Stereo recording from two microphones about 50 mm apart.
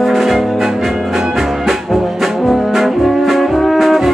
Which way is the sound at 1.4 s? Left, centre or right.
Centre.